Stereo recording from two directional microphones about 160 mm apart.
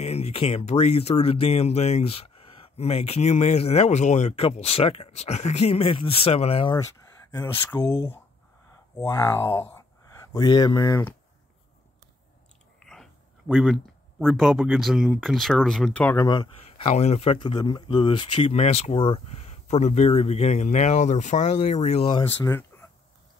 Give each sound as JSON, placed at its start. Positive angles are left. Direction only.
{"t": 0.0, "sound": "speech", "side_deg": 40}
{"t": 6.8, "sound": "speech", "side_deg": 20}
{"t": 12.8, "sound": "a sound", "side_deg": 5}
{"t": 14.2, "sound": "speech", "side_deg": 0}
{"t": 16.3, "sound": "speech", "side_deg": 25}
{"t": 16.9, "sound": "speech", "side_deg": 40}
{"t": 22.5, "sound": "a sound", "side_deg": 15}